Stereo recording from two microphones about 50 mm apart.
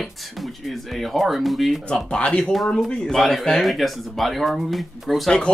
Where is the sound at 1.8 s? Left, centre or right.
Centre.